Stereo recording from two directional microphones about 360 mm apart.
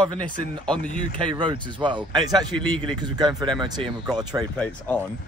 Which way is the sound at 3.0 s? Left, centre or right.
Centre.